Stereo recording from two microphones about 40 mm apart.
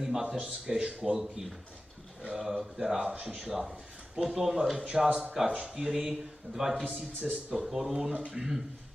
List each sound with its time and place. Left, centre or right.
0.0 s speech: centre
2.3 s a man's voice: centre
7.2 s speech: right
7.5 s a man's voice: centre